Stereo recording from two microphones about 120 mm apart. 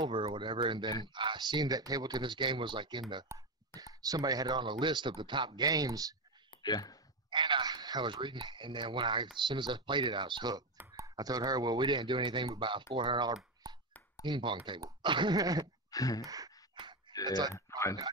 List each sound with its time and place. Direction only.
0.0 s speech: 45° right (ahead or behind); by 6.1 s 30° right (ahead or behind)
6.6 s speech: 35° left (ahead or behind)
7.2 s speech: 40° right (ahead or behind)
15.9 s a sound: 30° left (ahead or behind)
16.3 s sigh: 30° right (ahead or behind)
17.1 s speech: 30° left (ahead or behind)